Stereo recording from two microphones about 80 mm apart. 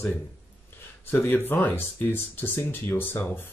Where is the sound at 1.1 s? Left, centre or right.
Left.